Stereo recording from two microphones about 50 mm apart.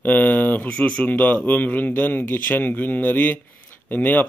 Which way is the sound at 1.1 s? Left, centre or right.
Left.